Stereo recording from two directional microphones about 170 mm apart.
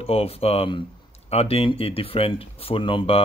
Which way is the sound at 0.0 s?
35° left (ahead or behind).